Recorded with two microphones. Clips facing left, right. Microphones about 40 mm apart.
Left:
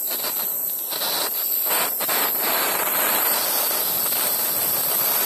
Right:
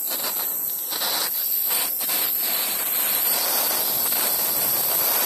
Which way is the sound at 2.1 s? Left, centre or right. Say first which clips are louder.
Left 8 dB; left.